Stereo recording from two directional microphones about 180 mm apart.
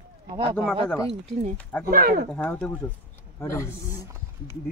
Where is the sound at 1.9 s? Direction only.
50° right (ahead or behind).